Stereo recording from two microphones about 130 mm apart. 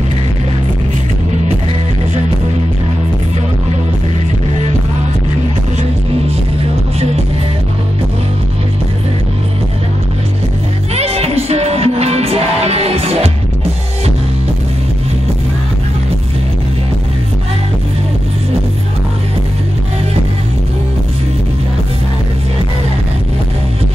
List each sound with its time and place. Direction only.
11.0 s music: 55° right (ahead or behind)